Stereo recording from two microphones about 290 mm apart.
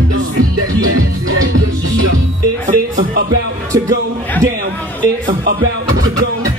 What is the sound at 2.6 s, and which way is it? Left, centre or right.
Music, right.